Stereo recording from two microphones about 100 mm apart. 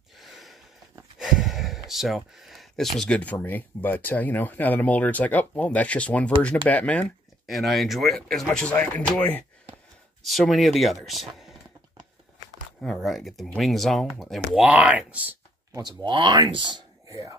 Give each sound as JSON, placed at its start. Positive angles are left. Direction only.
{"t": 0.2, "sound": "a sound", "side_deg": 0}
{"t": 1.2, "sound": "speech", "side_deg": -5}
{"t": 7.4, "sound": "speech", "side_deg": 0}
{"t": 10.2, "sound": "speech", "side_deg": 0}
{"t": 12.8, "sound": "speech", "side_deg": 0}
{"t": 15.8, "sound": "speech", "side_deg": -45}
{"t": 17.1, "sound": "speech", "side_deg": -35}